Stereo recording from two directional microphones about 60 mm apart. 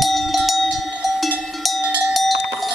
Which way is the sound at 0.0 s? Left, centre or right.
Centre.